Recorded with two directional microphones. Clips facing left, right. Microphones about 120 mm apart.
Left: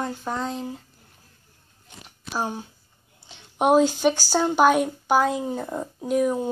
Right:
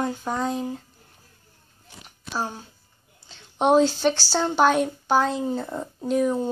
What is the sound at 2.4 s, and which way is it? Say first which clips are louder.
A woman's voice: left 2 dB; 15° left (ahead or behind).